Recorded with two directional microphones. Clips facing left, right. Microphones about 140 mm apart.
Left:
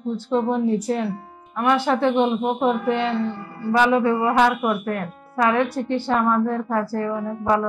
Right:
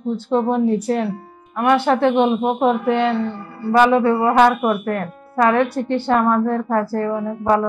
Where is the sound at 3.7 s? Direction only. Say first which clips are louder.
Right 4 dB; 55° right (ahead or behind).